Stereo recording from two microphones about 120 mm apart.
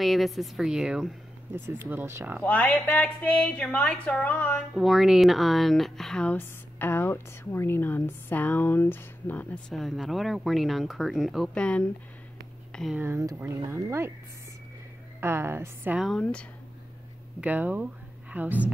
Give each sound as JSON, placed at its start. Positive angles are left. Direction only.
{"t": 0.0, "sound": "speech", "side_deg": 0}
{"t": 1.5, "sound": "speech", "side_deg": -20}
{"t": 2.4, "sound": "a woman's voice", "side_deg": 10}
{"t": 4.7, "sound": "speech", "side_deg": 0}
{"t": 6.3, "sound": "a woman's voice", "side_deg": 15}
{"t": 9.8, "sound": "speech", "side_deg": 0}
{"t": 12.9, "sound": "speech", "side_deg": -20}
{"t": 15.1, "sound": "speech", "side_deg": -20}
{"t": 16.0, "sound": "speech", "side_deg": 5}
{"t": 17.4, "sound": "speech", "side_deg": -15}